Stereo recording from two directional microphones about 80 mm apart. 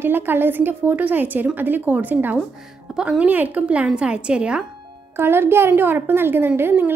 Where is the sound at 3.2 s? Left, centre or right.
Centre.